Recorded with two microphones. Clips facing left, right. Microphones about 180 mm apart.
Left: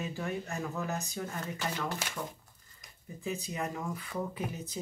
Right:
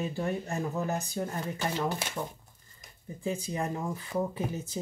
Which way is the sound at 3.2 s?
30° right (ahead or behind).